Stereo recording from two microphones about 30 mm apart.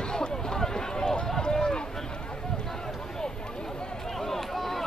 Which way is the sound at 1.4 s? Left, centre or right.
Left.